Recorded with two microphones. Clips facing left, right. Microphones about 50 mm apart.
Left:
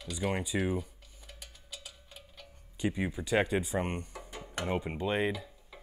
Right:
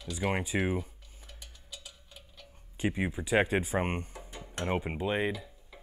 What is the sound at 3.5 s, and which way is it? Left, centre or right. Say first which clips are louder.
Speech: right 2 dB; right.